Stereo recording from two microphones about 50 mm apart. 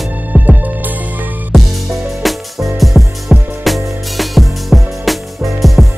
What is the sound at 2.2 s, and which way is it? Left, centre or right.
Music, centre.